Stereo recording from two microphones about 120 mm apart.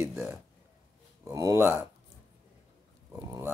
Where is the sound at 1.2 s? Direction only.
25° right (ahead or behind).